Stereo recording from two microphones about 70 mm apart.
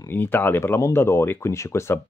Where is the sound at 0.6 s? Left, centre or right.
Left.